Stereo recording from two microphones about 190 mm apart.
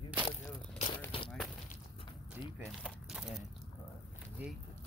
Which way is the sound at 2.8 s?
Centre (ahead or behind).